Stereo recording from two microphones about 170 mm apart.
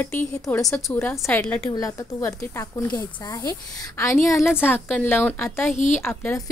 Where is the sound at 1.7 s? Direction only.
20° left (ahead or behind).